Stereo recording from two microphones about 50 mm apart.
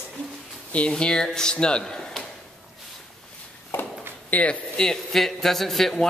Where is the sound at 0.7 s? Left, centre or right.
Left.